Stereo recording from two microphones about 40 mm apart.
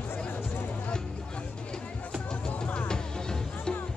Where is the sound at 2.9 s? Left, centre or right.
Centre.